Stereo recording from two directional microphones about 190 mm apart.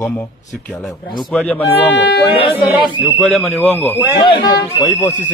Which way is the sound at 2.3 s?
30° left (ahead or behind).